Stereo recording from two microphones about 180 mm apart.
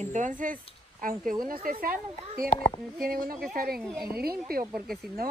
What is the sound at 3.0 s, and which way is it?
Speech, 55° right (ahead or behind).